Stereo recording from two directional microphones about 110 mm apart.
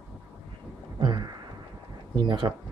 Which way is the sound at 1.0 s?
40° right (ahead or behind).